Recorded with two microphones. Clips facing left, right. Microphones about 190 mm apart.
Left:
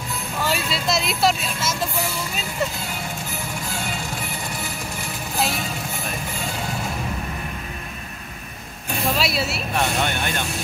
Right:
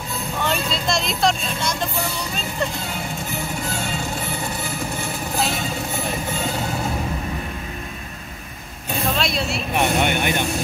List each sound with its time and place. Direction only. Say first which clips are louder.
0.4 s vehicle: right 1 dB; 5° left (ahead or behind)
9.1 s speech: left 1 dB; 5° left (ahead or behind)
9.8 s speech: right 4 dB; 15° right (ahead or behind)